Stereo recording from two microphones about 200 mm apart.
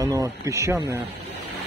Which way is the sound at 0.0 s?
15° right (ahead or behind).